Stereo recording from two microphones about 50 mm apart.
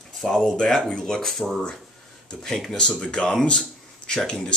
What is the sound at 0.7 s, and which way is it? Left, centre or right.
Speech, centre.